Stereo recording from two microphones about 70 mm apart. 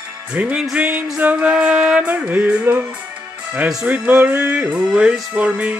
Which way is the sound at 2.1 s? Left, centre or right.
Right.